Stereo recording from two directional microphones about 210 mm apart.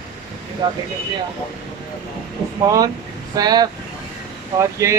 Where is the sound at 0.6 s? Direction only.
20° right (ahead or behind).